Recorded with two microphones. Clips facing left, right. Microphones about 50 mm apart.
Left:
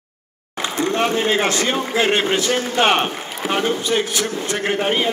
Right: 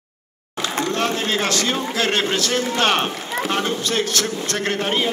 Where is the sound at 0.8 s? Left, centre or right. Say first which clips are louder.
Left 5 dB; left.